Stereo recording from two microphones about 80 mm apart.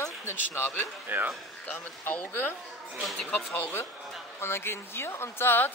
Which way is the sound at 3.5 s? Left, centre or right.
Left.